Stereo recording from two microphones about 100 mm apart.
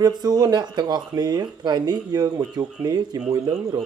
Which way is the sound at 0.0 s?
40° right (ahead or behind).